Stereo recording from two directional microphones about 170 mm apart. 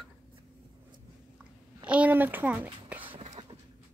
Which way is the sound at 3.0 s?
35° right (ahead or behind).